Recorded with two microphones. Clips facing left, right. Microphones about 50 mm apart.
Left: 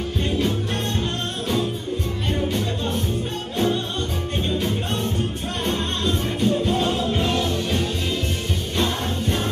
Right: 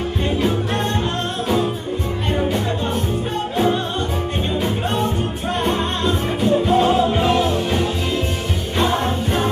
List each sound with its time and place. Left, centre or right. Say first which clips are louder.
3.5 s music: right 3 dB; centre
5.6 s music: right 4 dB; centre